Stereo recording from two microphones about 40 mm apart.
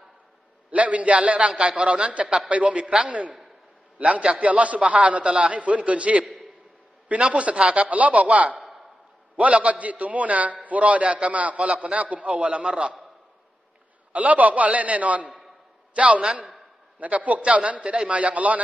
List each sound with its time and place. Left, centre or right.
0.7 s a man's voice: right
5.5 s a man's voice: right
14.1 s a man's voice: right
17.0 s a man's voice: right